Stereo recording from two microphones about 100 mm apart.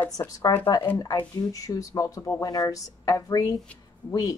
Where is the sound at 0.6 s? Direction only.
55° left (ahead or behind).